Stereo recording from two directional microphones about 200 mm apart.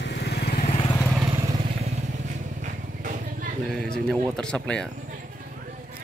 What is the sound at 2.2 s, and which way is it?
Vehicle, 40° right (ahead or behind).